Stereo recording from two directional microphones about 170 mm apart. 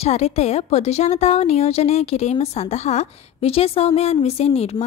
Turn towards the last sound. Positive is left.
turn(degrees=35)  # may be behind; listen again after turning